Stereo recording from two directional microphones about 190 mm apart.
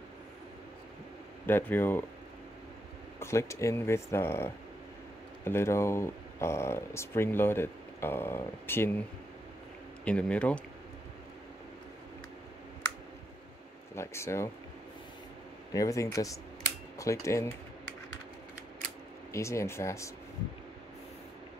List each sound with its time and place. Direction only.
1.4 s speech: 10° left (ahead or behind)
3.2 s speech: 15° left (ahead or behind)
10.0 s speech: 5° left (ahead or behind)
13.9 s speech: 15° left (ahead or behind)
15.7 s speech: 15° left (ahead or behind)
19.3 s speech: 15° left (ahead or behind)